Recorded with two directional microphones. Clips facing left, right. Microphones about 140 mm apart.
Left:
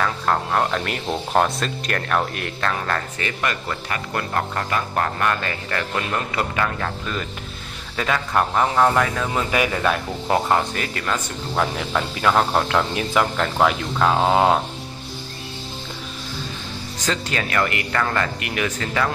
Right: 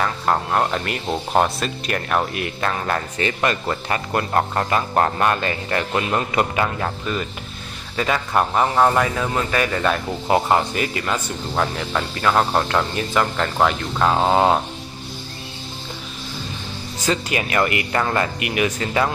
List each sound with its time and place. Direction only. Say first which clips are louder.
0.0 s speech: right 1 dB; 10° right (ahead or behind)
3.2 s speech: right 4 dB; 25° right (ahead or behind)
7.9 s speech: right 1 dB; 5° right (ahead or behind)
9.5 s speech: left 1 dB; 10° left (ahead or behind)
10.2 s speech: right 2 dB; 10° right (ahead or behind)
17.0 s speech: right 3 dB; 15° right (ahead or behind)